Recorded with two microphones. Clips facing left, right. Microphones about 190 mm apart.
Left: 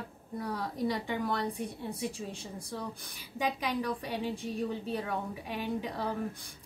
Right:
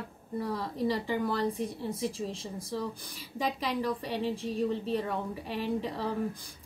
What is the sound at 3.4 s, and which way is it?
Speech, centre (ahead or behind).